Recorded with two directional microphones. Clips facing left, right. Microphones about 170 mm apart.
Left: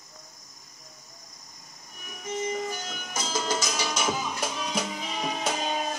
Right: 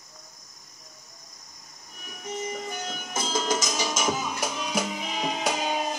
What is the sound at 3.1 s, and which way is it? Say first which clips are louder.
Music: right 2 dB; 20° right (ahead or behind).